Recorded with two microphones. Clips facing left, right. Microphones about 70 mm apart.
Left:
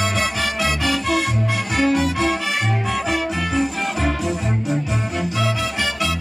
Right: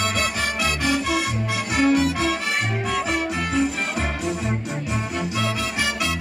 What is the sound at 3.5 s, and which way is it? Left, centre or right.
Music, centre.